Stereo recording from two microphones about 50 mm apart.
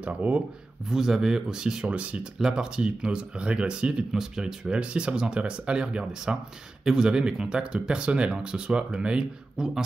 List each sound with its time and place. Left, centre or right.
0.0 s speech: right
0.8 s speech: centre
1.9 s speech: right
2.3 s speech: centre
4.7 s speech: right